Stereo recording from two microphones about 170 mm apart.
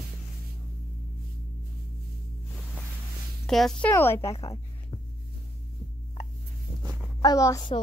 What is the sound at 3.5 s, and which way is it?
Speech, 5° left (ahead or behind).